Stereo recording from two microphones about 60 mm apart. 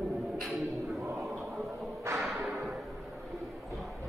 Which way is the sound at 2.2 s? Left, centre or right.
Centre.